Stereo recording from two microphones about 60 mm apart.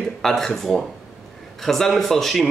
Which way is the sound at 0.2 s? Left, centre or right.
Centre.